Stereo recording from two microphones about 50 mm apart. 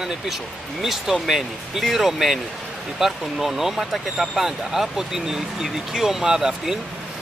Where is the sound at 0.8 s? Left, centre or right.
Centre.